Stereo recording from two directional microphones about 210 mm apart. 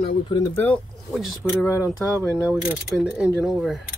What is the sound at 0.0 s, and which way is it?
Speech, 25° left (ahead or behind).